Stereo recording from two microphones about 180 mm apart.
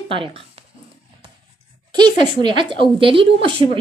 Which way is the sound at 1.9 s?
25° right (ahead or behind).